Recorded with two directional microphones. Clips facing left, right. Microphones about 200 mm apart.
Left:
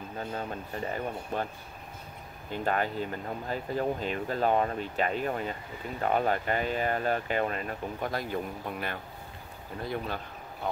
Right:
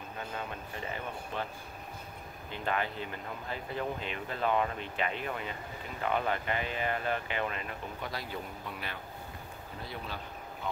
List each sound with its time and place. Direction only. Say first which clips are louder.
0.3 s speech: left 5 dB; 40° left (ahead or behind)
2.5 s speech: left 5 dB; 45° left (ahead or behind)